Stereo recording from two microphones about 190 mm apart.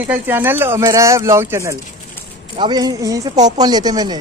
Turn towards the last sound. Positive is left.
turn(degrees=-20)  # may be behind; listen again after turning